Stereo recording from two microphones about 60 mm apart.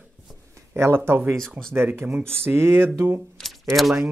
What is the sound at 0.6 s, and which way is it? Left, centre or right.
Speech, right.